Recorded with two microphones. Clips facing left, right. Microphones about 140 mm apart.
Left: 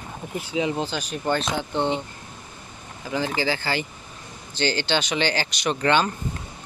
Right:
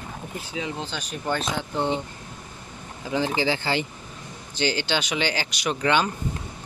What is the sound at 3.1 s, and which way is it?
Speech, 20° right (ahead or behind).